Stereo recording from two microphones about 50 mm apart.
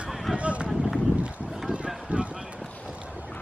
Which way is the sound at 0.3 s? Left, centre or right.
Right.